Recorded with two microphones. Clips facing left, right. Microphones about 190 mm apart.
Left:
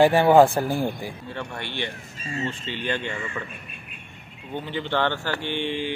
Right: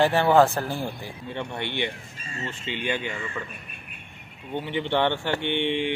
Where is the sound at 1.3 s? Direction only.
20° right (ahead or behind).